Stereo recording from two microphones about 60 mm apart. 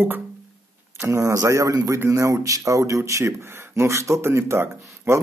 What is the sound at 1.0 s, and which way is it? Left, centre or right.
Speech, right.